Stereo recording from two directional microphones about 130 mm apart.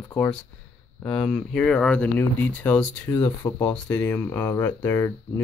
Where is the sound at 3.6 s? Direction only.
10° left (ahead or behind).